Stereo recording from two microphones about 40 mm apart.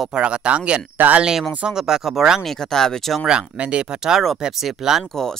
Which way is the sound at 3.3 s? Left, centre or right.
Right.